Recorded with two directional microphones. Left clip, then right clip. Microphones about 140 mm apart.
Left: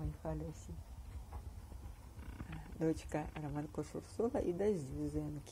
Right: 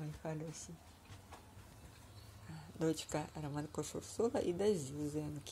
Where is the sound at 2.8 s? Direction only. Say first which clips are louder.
Even; 20° right (ahead or behind).